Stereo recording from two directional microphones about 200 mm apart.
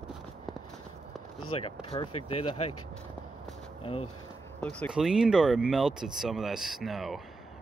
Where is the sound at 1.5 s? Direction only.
30° left (ahead or behind).